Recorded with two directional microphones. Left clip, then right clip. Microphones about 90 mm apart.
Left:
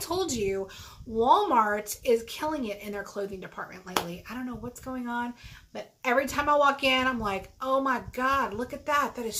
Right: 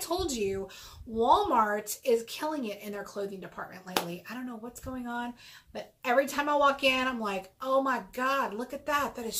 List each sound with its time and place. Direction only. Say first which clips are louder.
0.0 s a woman's voice: left 2 dB; 30° left (ahead or behind)